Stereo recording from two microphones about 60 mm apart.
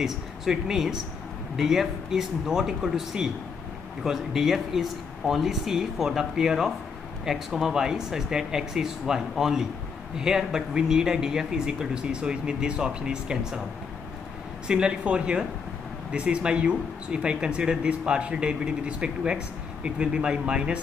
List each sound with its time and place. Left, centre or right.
0.0 s speech: centre
14.7 s speech: centre